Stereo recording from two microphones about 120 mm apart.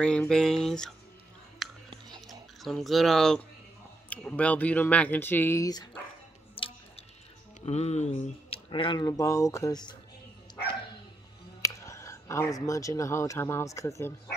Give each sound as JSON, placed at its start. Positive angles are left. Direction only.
{"t": 0.3, "sound": "speech", "side_deg": 5}
{"t": 1.9, "sound": "chewing", "side_deg": -35}
{"t": 2.6, "sound": "speech", "side_deg": 0}
{"t": 6.5, "sound": "tick-tock", "side_deg": 50}
{"t": 7.6, "sound": "speech", "side_deg": 65}
{"t": 11.6, "sound": "speech", "side_deg": 25}